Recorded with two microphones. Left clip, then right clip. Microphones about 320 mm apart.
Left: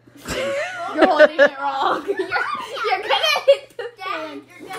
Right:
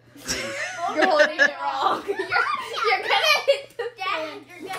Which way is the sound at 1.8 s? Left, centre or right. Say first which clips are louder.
Left 2 dB; centre.